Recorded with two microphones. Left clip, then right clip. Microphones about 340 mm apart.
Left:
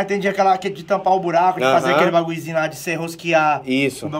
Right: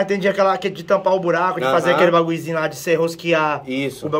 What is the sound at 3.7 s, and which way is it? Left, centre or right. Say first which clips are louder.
Speech: left 4 dB; left.